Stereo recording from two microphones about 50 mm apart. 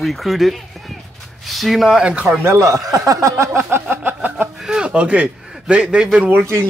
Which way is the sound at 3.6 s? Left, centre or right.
Right.